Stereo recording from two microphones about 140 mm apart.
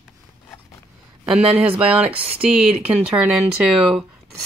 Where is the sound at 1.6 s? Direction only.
10° right (ahead or behind).